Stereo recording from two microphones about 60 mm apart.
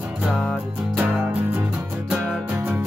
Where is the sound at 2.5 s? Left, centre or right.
Centre.